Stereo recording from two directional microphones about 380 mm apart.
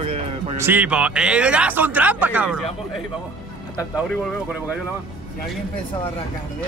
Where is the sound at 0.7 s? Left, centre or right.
Centre.